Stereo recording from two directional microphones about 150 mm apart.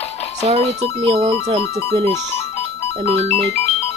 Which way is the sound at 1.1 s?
40° right (ahead or behind).